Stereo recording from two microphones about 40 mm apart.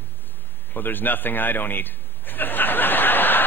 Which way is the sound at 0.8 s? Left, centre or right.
Left.